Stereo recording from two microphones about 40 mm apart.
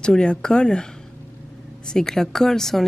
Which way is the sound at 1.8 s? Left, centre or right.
Centre.